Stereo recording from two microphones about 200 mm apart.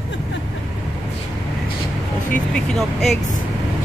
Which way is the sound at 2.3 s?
Centre (ahead or behind).